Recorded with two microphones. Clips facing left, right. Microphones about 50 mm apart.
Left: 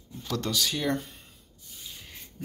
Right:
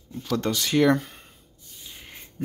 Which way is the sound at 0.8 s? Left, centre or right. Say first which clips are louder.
Right 9 dB; right.